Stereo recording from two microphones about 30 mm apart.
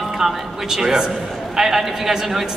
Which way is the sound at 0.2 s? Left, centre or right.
Centre.